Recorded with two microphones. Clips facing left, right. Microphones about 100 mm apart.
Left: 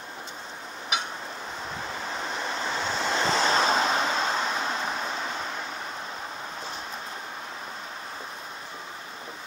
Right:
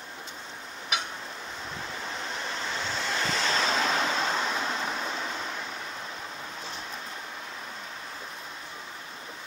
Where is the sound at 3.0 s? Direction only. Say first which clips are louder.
Left 6 dB; 30° left (ahead or behind).